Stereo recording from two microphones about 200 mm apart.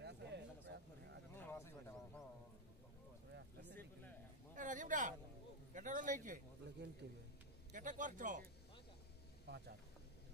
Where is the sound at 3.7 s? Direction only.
10° left (ahead or behind).